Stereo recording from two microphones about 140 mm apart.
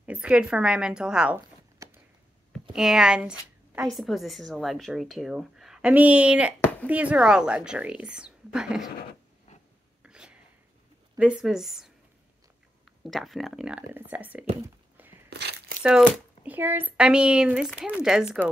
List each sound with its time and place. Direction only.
0.0 s speech: 10° right (ahead or behind)
1.8 s a sound: 25° right (ahead or behind)
2.7 s a woman's voice: 5° right (ahead or behind)
10.0 s a sound: 5° right (ahead or behind)
11.1 s speech: 5° right (ahead or behind)
14.6 s whispering: 15° right (ahead or behind)
15.8 s speech: 10° right (ahead or behind)